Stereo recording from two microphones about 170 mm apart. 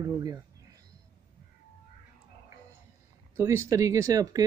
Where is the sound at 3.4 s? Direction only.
15° right (ahead or behind).